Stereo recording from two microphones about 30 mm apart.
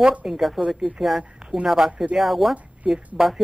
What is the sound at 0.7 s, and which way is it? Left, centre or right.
Speech, centre.